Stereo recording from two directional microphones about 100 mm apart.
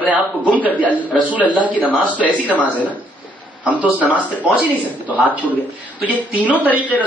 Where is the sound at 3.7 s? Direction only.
15° right (ahead or behind).